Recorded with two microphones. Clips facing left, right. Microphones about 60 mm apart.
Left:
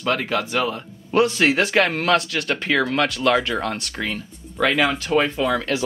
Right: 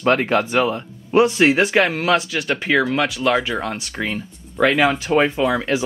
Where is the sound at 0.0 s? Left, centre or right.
Right.